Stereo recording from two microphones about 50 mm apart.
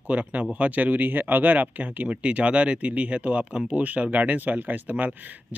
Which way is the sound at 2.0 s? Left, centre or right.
Right.